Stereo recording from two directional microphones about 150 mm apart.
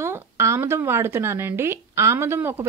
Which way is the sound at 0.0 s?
20° right (ahead or behind).